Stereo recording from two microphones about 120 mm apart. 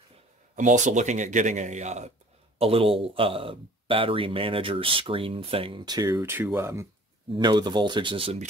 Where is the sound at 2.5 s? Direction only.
50° right (ahead or behind); by 6.8 s 20° right (ahead or behind).